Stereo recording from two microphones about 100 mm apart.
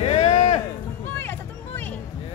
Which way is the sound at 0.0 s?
85° left.